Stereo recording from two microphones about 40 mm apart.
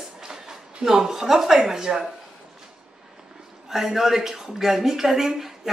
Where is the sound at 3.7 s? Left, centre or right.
Centre.